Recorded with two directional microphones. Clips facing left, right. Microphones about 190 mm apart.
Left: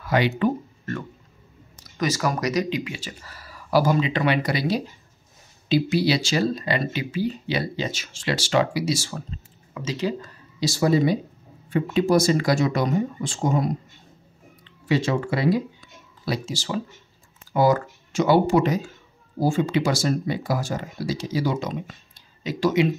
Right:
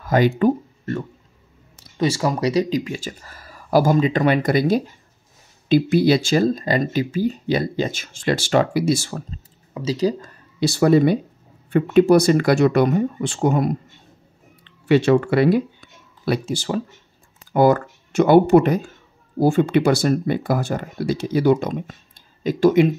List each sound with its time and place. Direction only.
0.0 s speech: 45° right (ahead or behind)
0.4 s speech: 30° right (ahead or behind)
2.8 s speech: 45° right (ahead or behind)
9.3 s speech: 35° right (ahead or behind)
10.6 s speech: 60° right (ahead or behind)